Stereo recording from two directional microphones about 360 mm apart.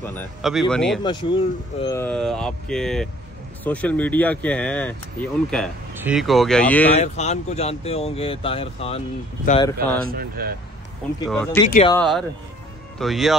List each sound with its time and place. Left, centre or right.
0.0 s speech: centre
6.9 s speech: centre
9.9 s speech: right
11.2 s speech: centre
11.6 s speech: centre
12.0 s speech: centre